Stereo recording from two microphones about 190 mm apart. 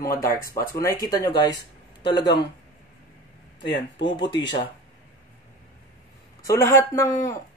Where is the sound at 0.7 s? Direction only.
20° left (ahead or behind).